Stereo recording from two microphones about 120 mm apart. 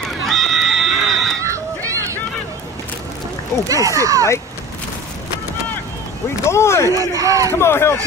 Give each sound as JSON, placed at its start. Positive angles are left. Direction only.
{"t": 0.0, "sound": "neigh", "side_deg": 0}
{"t": 1.4, "sound": "run", "side_deg": -25}
{"t": 3.6, "sound": "speech", "side_deg": -30}
{"t": 6.5, "sound": "speech", "side_deg": 20}
{"t": 7.0, "sound": "speech", "side_deg": -30}
{"t": 7.5, "sound": "speech", "side_deg": 20}